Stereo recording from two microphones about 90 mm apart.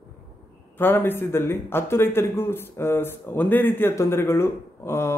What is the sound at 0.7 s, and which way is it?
Speech, 25° left (ahead or behind).